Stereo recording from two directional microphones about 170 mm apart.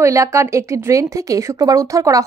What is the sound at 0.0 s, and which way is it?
A woman's voice, 15° right (ahead or behind).